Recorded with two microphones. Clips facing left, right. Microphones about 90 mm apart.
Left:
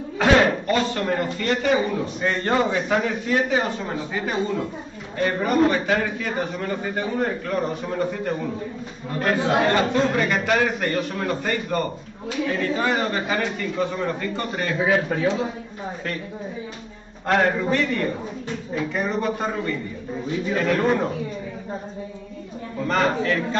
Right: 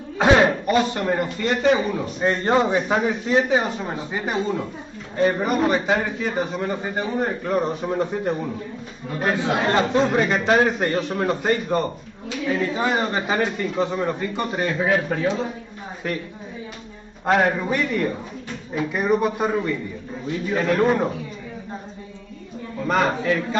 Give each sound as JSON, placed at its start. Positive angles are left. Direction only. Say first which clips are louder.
{"t": 0.2, "sound": "a man's voice", "louder": "right 1 dB", "side_deg": -20}
{"t": 14.9, "sound": "a man's voice", "louder": "left 2 dB", "side_deg": 0}
{"t": 17.3, "sound": "a man's voice", "louder": "right 1 dB", "side_deg": -15}
{"t": 22.8, "sound": "a man's voice", "louder": "right 1 dB", "side_deg": -10}